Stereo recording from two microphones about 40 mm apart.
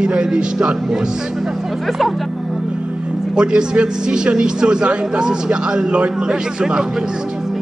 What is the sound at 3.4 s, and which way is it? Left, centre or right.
A man's voice, right.